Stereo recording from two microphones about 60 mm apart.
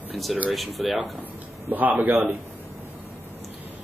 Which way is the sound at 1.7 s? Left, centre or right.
Right.